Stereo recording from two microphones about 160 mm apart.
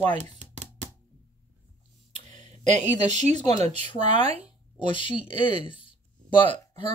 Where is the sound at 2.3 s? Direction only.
45° right (ahead or behind).